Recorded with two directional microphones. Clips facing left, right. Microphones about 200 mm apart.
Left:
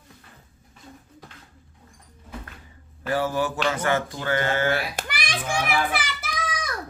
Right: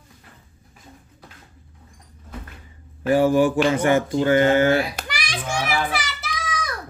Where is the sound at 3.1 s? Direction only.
15° right (ahead or behind).